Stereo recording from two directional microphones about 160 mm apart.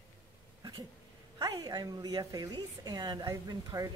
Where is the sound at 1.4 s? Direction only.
25° right (ahead or behind).